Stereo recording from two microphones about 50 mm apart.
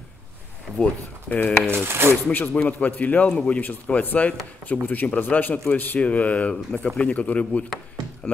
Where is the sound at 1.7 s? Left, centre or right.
Right.